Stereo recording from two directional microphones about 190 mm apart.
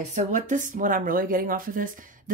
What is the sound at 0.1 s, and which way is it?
Speech, 40° right (ahead or behind).